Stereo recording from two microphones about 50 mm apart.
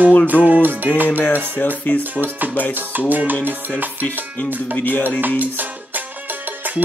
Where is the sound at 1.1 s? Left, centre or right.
Left.